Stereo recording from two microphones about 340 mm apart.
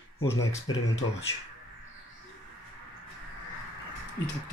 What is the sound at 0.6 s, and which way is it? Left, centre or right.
Speech, left.